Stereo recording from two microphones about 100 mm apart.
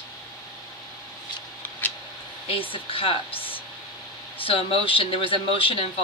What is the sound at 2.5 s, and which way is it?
Speech, 70° left (ahead or behind).